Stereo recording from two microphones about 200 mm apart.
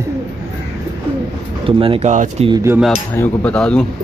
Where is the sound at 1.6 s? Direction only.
25° right (ahead or behind).